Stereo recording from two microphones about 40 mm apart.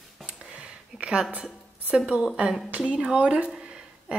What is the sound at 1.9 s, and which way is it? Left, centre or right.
A woman's voice, right.